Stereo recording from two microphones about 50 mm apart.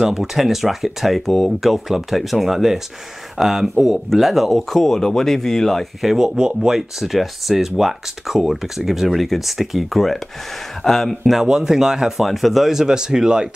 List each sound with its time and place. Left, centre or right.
0.0 s speech: centre
6.1 s speech: centre
11.3 s speech: centre